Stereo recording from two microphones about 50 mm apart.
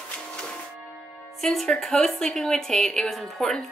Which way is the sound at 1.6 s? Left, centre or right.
Centre.